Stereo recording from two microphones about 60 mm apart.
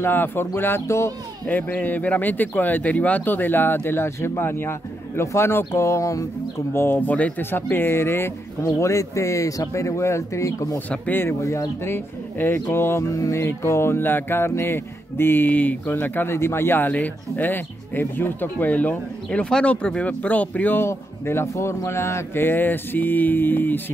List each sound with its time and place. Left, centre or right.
0.0 s speech: left
0.8 s music: left
1.5 s speech: left
6.7 s speech: left
7.0 s speech: left
7.7 s speech: left
8.7 s speech: left
10.9 s speech: left
11.4 s speech: left
11.8 s speech: left
12.7 s music: left
13.1 s speech: left
20.8 s speech: left